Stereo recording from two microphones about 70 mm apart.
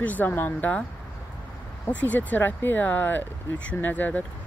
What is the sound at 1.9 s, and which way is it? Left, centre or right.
Speech, left.